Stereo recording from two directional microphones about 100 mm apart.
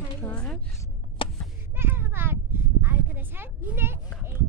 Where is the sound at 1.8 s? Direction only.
20° right (ahead or behind).